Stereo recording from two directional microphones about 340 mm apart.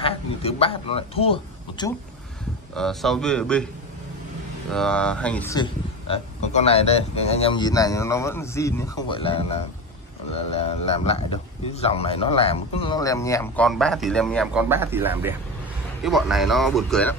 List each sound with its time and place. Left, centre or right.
0.0 s a man's voice: centre
2.7 s speech: centre
4.6 s speech: centre